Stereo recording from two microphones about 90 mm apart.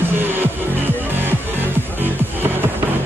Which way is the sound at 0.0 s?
25° right (ahead or behind).